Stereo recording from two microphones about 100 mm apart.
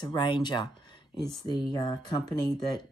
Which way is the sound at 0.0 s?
50° left (ahead or behind).